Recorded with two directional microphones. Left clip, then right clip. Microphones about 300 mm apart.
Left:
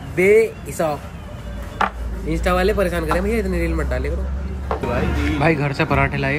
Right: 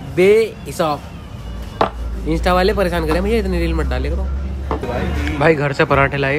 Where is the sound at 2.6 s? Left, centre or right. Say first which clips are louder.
Right 3 dB; centre.